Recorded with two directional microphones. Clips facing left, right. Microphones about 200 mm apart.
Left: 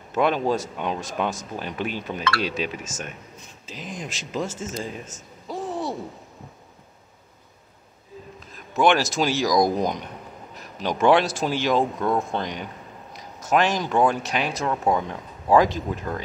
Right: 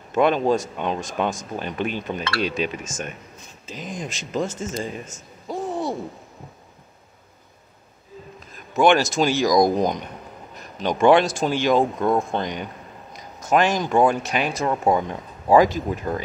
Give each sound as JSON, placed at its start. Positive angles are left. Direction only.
{"t": 0.1, "sound": "speech", "side_deg": 5}
{"t": 8.7, "sound": "speech", "side_deg": 5}
{"t": 12.0, "sound": "speech", "side_deg": -20}
{"t": 12.4, "sound": "speech", "side_deg": 0}
{"t": 13.1, "sound": "a sound", "side_deg": 0}
{"t": 13.8, "sound": "speech", "side_deg": -10}
{"t": 14.2, "sound": "speech", "side_deg": 0}